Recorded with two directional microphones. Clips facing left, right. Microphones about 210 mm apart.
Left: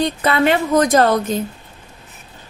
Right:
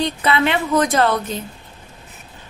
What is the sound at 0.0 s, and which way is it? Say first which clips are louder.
A woman's voice: left 2 dB; 45° left (ahead or behind).